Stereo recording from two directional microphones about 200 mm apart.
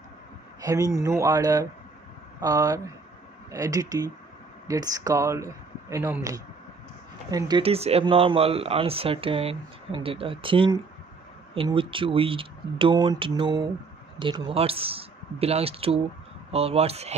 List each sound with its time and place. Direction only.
0.6 s speech: 15° right (ahead or behind)